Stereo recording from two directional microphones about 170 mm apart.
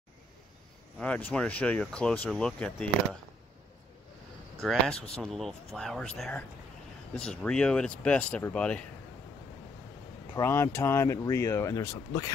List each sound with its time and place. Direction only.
0.9 s speech: 5° left (ahead or behind)
5.0 s speech: centre (ahead or behind)
10.3 s speech: 15° left (ahead or behind)